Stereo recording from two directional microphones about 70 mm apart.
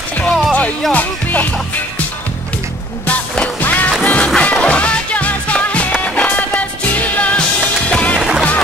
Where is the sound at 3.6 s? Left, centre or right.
Left.